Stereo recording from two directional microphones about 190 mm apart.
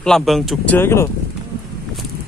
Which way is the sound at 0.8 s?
15° left (ahead or behind).